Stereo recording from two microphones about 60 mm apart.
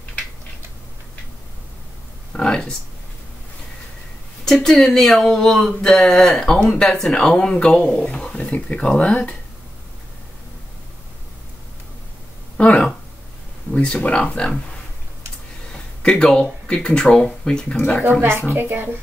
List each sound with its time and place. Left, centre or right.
2.3 s speech: centre
4.6 s speech: centre
12.5 s speech: left
16.0 s speech: centre
18.5 s a woman's voice: right